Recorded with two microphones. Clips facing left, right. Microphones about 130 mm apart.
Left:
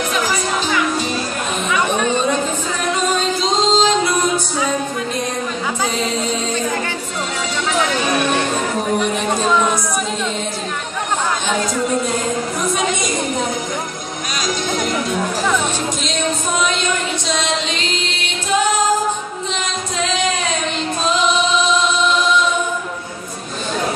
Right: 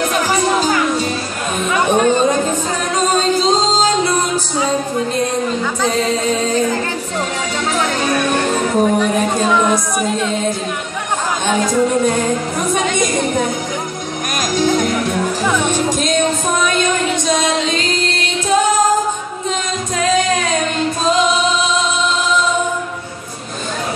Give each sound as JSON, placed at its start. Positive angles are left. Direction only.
{"t": 0.3, "sound": "music", "side_deg": -40}
{"t": 1.7, "sound": "a sound", "side_deg": -50}
{"t": 4.6, "sound": "music", "side_deg": -30}
{"t": 17.3, "sound": "music", "side_deg": -45}